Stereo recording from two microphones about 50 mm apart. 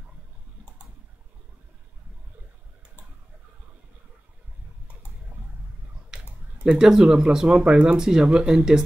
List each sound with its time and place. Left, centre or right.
6.0 s speech: centre